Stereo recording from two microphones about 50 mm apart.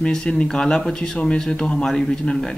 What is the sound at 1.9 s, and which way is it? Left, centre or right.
Speech, centre.